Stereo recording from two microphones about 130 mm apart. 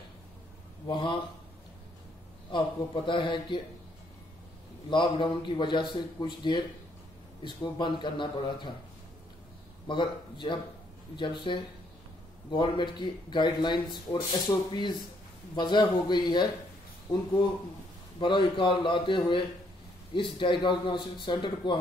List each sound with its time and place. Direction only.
0.8 s a man's voice: 40° left (ahead or behind)
2.5 s a man's voice: 40° left (ahead or behind)
4.8 s a man's voice: 40° left (ahead or behind)
9.8 s a man's voice: 40° left (ahead or behind)
18.2 s a man's voice: 40° left (ahead or behind)